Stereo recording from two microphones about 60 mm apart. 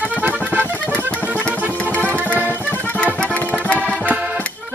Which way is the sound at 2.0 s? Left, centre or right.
Right.